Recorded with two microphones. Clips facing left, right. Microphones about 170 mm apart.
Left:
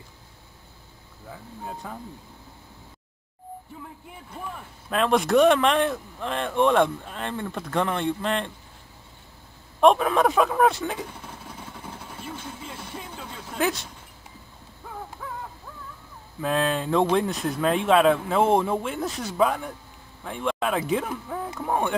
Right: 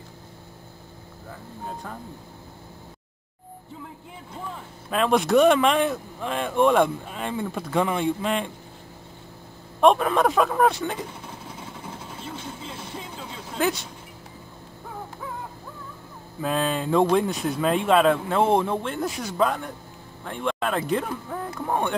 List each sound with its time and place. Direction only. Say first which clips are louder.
1.8 s speech: even; 5° left (ahead or behind)
4.8 s speech: right 1 dB; centre (ahead or behind)
9.8 s speech: even; centre (ahead or behind)
12.7 s music: right 1 dB; 20° right (ahead or behind)
13.6 s speech: right 1 dB; centre (ahead or behind)
16.3 s speech: even; centre (ahead or behind)